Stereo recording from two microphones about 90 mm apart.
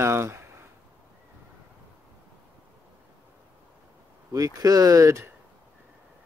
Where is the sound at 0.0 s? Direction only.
30° right (ahead or behind).